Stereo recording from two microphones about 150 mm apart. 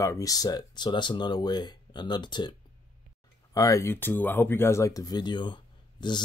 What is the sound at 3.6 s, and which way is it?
Speech, 20° left (ahead or behind).